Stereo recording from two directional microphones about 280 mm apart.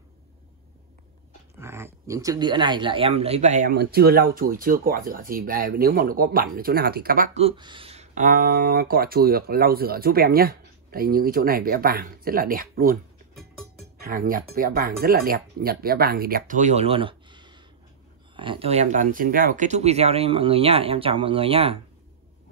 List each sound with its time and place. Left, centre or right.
1.6 s speech: centre